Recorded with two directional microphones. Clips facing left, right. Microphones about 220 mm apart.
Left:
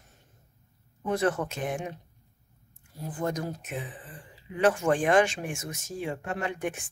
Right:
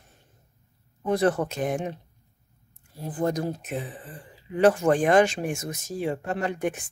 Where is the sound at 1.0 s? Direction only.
35° right (ahead or behind).